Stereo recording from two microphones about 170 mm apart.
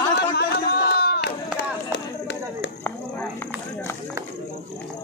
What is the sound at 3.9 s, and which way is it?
Run, 15° left (ahead or behind).